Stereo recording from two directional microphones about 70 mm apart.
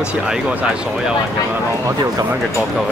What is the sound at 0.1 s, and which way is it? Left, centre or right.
Speech, centre.